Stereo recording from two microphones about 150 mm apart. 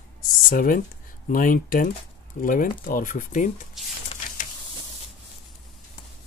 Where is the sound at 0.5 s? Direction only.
65° left (ahead or behind).